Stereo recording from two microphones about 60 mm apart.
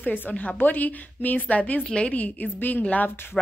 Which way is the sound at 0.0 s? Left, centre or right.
Left.